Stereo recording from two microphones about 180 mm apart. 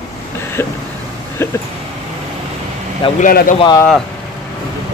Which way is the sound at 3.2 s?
50° left (ahead or behind).